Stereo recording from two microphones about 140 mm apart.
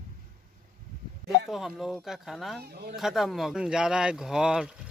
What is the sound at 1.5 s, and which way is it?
Speech, 5° right (ahead or behind).